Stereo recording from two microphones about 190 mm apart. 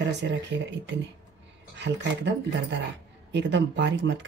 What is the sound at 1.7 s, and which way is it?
Speech, 70° right (ahead or behind).